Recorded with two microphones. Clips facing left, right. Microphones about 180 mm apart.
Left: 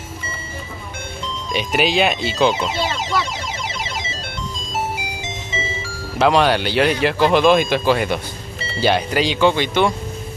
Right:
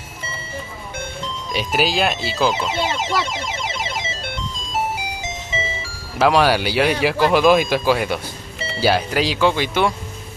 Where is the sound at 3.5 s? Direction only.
25° right (ahead or behind).